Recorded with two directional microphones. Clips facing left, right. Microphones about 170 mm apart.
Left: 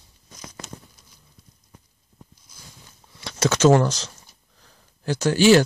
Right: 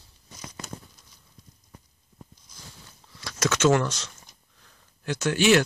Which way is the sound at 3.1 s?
25° left (ahead or behind).